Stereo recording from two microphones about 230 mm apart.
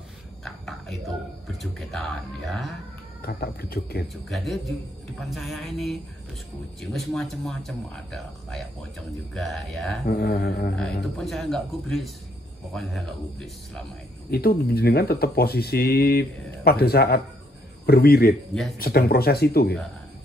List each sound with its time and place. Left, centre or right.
0.7 s a sound: centre
1.6 s speech: centre
3.2 s speech: left
4.3 s speech: centre
10.0 s speech: left
11.1 s speech: centre
14.3 s speech: left